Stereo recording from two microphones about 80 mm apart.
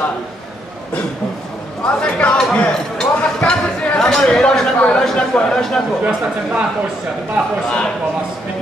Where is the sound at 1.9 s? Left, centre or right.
Centre.